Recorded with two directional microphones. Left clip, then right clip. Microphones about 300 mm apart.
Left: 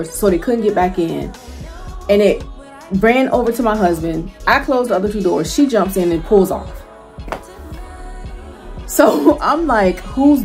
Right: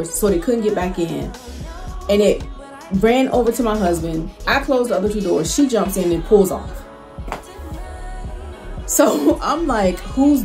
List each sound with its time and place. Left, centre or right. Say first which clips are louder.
0.2 s speech: left 3 dB; centre
8.8 s speech: left 4 dB; centre